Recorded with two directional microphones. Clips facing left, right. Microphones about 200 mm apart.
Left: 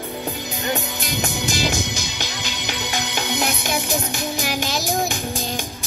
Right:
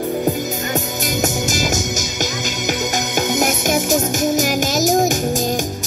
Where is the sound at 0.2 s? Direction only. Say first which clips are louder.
Right 8 dB; 45° right (ahead or behind).